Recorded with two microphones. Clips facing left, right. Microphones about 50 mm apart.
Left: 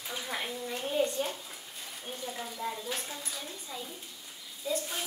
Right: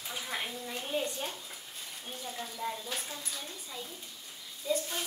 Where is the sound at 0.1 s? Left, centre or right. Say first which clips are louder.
Left 1 dB; centre.